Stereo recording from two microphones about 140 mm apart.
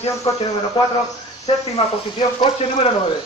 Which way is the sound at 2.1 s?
40° left (ahead or behind).